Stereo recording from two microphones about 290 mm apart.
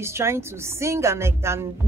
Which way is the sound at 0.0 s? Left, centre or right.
Centre.